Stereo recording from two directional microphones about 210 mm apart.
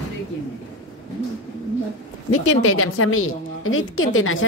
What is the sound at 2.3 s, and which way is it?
A woman's voice, 85° left.